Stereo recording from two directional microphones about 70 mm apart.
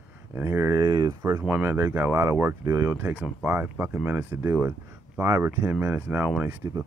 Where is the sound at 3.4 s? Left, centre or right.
Right.